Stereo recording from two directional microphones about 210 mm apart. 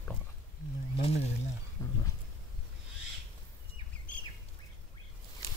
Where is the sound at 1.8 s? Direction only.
15° left (ahead or behind).